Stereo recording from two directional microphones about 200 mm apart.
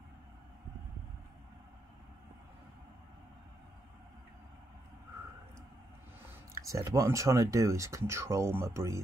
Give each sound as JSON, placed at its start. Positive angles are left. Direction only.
{"t": 6.7, "sound": "speech", "side_deg": -15}